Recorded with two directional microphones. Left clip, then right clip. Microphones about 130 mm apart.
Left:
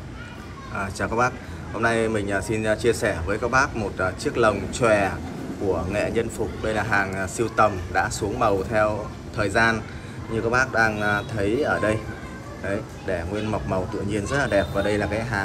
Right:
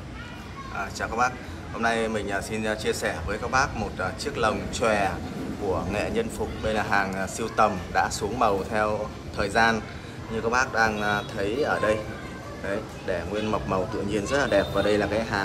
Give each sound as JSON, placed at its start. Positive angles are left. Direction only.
{"t": 0.7, "sound": "a man's voice", "side_deg": -10}